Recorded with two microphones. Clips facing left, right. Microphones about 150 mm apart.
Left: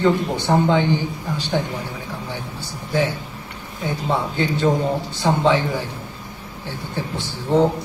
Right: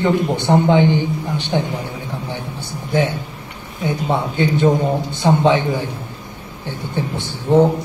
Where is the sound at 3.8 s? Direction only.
15° right (ahead or behind).